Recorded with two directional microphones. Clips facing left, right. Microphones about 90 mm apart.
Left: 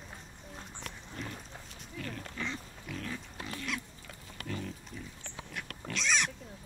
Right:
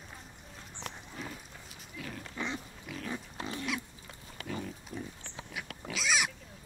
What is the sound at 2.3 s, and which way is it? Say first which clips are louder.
Pig: right 2 dB; 20° right (ahead or behind).